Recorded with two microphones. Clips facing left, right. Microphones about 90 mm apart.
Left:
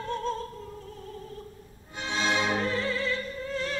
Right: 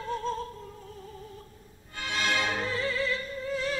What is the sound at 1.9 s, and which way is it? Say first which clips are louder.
Music: left 2 dB; 20° left (ahead or behind).